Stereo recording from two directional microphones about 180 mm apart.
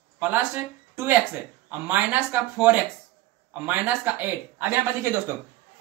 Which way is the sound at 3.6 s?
10° right (ahead or behind).